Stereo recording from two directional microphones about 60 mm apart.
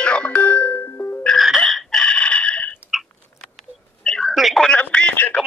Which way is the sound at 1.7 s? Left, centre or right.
Centre.